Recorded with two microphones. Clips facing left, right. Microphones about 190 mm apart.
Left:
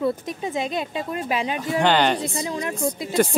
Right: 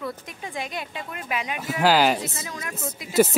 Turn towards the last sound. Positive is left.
turn(degrees=-5)  # may be behind; listen again after turning